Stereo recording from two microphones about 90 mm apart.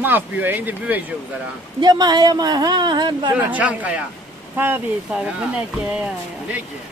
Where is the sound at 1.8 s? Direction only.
50° right (ahead or behind).